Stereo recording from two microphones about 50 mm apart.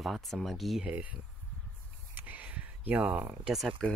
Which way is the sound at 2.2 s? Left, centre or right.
Right.